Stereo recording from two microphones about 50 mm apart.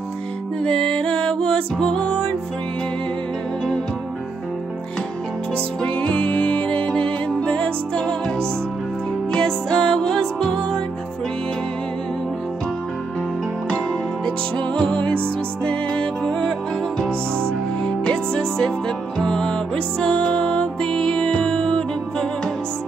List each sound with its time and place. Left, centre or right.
0.6 s music: centre
5.8 s music: left; by 10.8 s centre
14.2 s music: left